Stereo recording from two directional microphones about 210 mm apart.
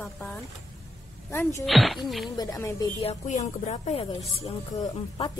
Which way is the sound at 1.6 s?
Centre (ahead or behind).